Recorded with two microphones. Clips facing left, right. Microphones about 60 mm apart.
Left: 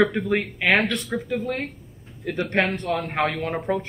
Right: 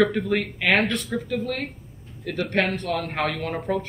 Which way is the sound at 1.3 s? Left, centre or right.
Centre.